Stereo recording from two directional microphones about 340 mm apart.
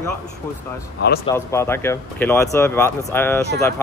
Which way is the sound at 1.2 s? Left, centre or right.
Centre.